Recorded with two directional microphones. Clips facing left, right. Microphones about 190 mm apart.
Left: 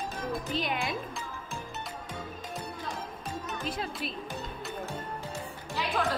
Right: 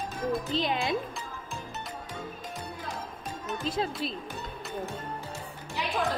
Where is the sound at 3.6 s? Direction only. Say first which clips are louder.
Right 6 dB; 25° right (ahead or behind).